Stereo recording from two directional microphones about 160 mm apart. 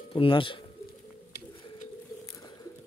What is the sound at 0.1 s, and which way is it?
Speech, 35° left (ahead or behind).